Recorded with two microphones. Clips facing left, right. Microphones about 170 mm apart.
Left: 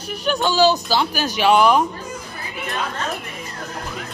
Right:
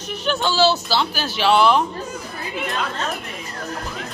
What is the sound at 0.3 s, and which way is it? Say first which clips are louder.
Speech: left 2 dB; 15° left (ahead or behind).